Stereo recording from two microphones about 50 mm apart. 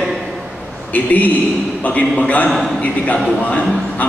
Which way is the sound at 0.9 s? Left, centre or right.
Left.